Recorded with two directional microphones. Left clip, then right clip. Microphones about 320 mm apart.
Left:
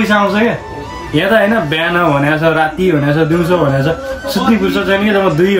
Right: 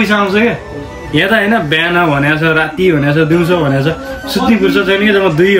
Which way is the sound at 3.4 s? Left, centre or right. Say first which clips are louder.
Even; centre.